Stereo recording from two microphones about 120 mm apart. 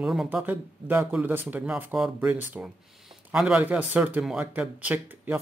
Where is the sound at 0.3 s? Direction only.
15° right (ahead or behind).